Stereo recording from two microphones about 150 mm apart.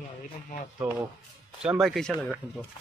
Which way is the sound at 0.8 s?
5° right (ahead or behind).